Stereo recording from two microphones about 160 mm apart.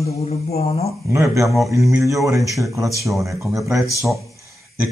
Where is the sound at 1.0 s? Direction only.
15° right (ahead or behind).